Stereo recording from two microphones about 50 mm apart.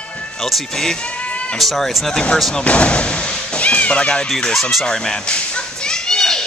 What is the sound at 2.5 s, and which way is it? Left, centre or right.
Speech, left.